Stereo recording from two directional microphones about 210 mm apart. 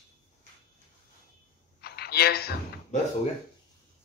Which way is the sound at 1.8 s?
50° left (ahead or behind).